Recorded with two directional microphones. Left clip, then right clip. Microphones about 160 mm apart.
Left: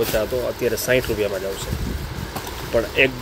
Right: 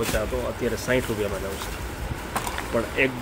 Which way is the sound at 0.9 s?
15° left (ahead or behind).